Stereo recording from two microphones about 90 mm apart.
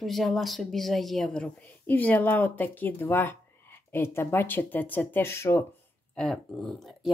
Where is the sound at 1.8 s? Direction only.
20° left (ahead or behind).